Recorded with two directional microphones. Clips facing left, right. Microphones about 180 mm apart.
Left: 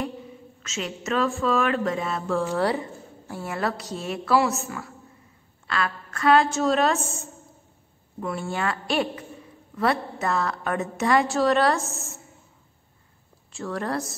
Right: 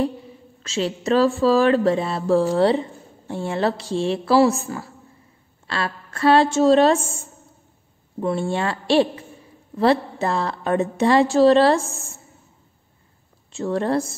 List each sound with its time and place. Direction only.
0.6 s speech: 30° right (ahead or behind)
13.5 s speech: 25° right (ahead or behind)